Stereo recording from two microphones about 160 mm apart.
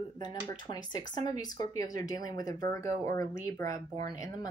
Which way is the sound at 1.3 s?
25° left (ahead or behind).